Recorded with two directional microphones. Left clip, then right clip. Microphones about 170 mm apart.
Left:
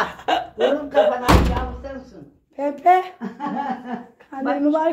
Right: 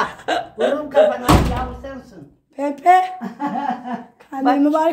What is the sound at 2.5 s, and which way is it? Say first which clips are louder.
Speech: right 3 dB; 30° right (ahead or behind).